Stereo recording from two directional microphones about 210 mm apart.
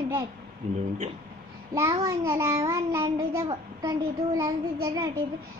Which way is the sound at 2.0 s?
15° right (ahead or behind).